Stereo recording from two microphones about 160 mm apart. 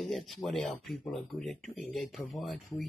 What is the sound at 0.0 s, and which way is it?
Speech, centre (ahead or behind).